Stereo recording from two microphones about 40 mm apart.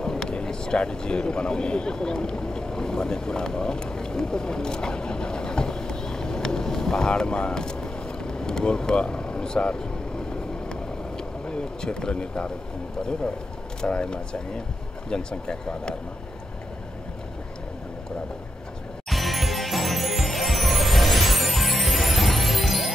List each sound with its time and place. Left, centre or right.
0.0 s speech: centre
11.4 s speech: left
13.7 s speech: left
19.0 s music: centre